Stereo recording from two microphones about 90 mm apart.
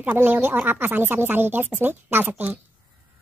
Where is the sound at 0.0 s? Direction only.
20° right (ahead or behind).